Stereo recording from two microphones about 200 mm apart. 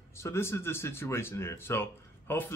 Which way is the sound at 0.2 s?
10° left (ahead or behind).